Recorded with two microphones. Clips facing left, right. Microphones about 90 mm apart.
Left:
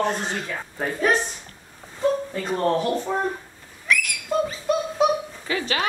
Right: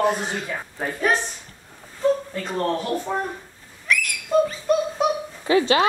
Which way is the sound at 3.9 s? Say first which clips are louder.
Right 2 dB; 5° left (ahead or behind).